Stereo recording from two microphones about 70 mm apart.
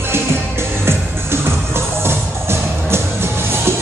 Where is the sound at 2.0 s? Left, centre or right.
Right.